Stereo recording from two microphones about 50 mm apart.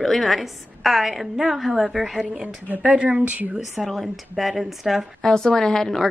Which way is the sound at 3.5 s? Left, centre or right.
Centre.